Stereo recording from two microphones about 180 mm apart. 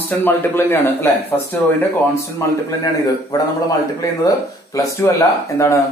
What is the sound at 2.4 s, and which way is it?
Speech, 15° left (ahead or behind).